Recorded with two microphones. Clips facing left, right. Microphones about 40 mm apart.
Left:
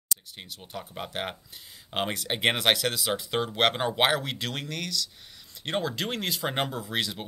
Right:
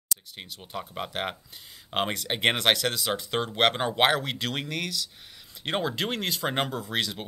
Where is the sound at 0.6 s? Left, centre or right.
Centre.